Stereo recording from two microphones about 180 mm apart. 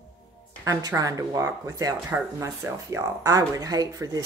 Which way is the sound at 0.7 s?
20° right (ahead or behind).